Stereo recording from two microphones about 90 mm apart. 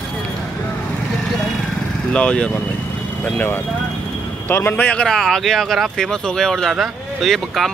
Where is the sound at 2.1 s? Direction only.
10° left (ahead or behind).